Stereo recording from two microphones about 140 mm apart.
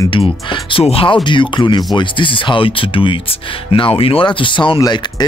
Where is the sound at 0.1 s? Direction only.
35° left (ahead or behind).